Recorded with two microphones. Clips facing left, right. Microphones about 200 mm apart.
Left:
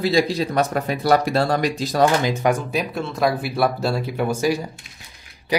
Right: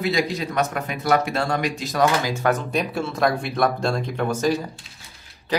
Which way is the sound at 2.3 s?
15° left (ahead or behind).